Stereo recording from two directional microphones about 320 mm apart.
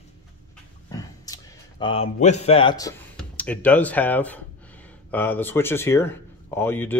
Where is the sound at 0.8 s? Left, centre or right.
Centre.